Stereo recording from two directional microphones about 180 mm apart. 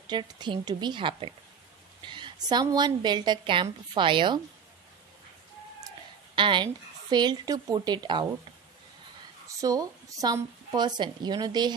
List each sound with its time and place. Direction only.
0.1 s speech: 25° right (ahead or behind)
6.3 s speech: 25° right (ahead or behind)
9.5 s speech: 20° right (ahead or behind)